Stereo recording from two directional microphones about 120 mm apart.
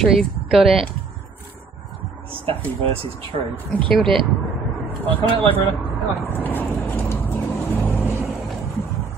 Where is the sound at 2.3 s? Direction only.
55° right (ahead or behind).